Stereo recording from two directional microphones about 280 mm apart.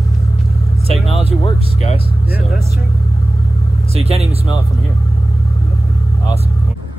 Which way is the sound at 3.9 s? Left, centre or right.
Right.